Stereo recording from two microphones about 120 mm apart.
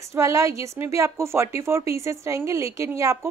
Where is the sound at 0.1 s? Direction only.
25° right (ahead or behind).